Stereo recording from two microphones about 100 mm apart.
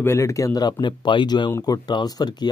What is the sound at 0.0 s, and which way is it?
Speech, 30° left (ahead or behind).